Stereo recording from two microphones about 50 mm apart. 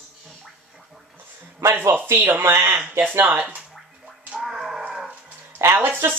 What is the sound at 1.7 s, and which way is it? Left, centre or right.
Speech, right.